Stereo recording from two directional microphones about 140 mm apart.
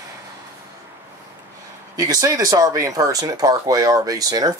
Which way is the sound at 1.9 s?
25° right (ahead or behind).